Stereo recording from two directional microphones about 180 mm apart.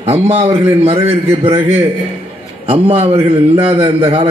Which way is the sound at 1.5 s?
10° right (ahead or behind).